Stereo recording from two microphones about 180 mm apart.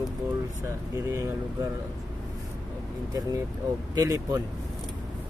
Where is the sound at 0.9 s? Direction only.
15° right (ahead or behind).